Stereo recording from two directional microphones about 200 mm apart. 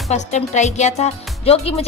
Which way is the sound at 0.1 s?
35° left (ahead or behind).